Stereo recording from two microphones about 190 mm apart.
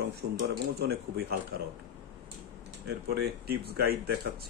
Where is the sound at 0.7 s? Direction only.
55° right (ahead or behind).